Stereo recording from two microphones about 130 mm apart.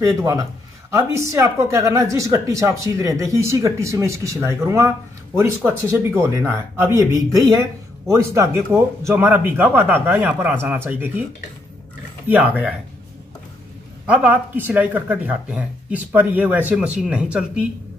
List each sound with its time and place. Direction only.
0.0 s speech: 30° right (ahead or behind)
12.3 s speech: 10° right (ahead or behind)
14.0 s speech: 10° right (ahead or behind)